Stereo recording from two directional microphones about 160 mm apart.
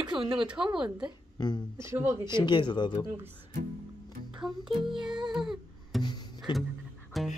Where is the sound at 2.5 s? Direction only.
30° left (ahead or behind).